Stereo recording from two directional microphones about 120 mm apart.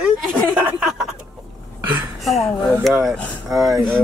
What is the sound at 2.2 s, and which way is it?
Speech, centre (ahead or behind).